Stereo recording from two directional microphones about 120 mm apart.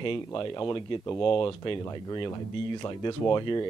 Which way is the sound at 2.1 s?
40° left (ahead or behind).